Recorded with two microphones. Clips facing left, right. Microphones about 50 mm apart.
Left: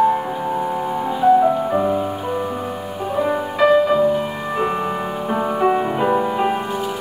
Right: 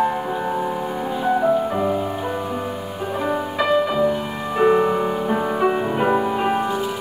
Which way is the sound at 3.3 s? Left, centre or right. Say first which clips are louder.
Left 5 dB; centre.